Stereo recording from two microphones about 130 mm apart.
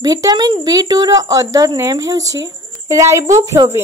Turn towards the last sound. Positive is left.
turn(degrees=-25)  # may be behind; listen again after turning